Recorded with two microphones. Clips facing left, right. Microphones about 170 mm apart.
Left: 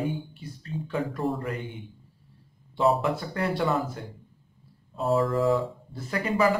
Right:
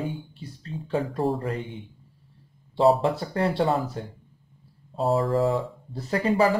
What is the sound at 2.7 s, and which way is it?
A man's voice, 30° right (ahead or behind).